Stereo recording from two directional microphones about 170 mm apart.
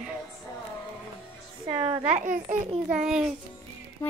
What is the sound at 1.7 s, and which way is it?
Speech, 30° right (ahead or behind).